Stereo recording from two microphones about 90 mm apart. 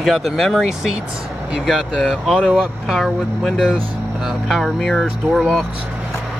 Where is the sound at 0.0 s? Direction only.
Centre (ahead or behind).